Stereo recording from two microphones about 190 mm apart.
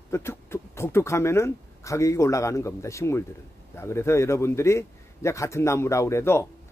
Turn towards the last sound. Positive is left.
turn(degrees=15)  # may be behind; listen again after turning